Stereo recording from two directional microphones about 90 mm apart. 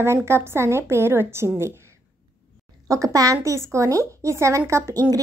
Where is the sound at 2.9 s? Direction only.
35° right (ahead or behind).